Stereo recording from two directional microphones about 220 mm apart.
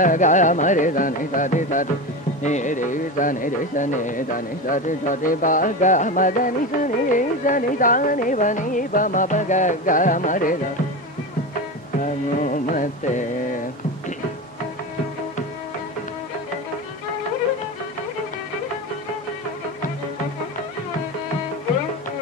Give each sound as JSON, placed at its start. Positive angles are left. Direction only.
{"t": 0.0, "sound": "music", "side_deg": 35}
{"t": 12.0, "sound": "music", "side_deg": 35}